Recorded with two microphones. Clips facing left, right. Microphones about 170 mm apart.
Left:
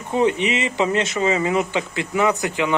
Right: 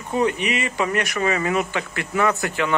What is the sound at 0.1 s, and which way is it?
Speech, 25° left (ahead or behind).